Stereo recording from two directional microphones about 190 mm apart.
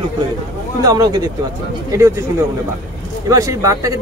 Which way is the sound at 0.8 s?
20° right (ahead or behind).